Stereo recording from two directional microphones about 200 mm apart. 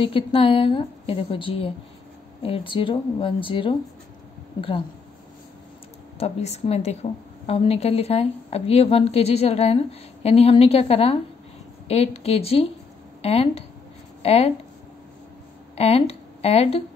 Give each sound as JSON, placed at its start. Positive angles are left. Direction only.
{"t": 0.0, "sound": "a woman's voice", "side_deg": 25}
{"t": 6.1, "sound": "a woman's voice", "side_deg": 30}
{"t": 15.7, "sound": "speech", "side_deg": 30}